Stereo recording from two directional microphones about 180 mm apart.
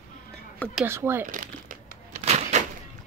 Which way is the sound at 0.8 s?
10° right (ahead or behind).